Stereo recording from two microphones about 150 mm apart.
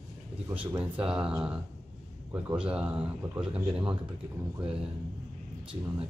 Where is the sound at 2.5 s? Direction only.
5° right (ahead or behind).